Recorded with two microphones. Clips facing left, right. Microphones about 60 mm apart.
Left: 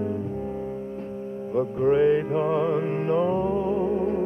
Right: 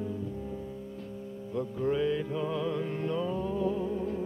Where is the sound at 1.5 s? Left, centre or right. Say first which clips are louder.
Left 9 dB; left.